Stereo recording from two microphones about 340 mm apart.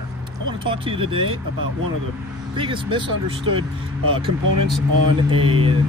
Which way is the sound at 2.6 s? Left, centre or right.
Centre.